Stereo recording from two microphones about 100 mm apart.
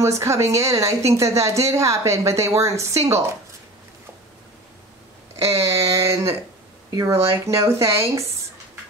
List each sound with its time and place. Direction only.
0.0 s a woman's voice: 30° right (ahead or behind)
5.3 s a woman's voice: 30° right (ahead or behind)